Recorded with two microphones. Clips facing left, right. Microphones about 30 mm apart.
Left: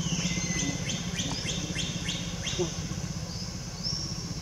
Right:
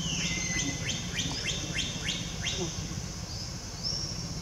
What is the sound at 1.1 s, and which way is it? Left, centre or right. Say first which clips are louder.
Bird: even; centre.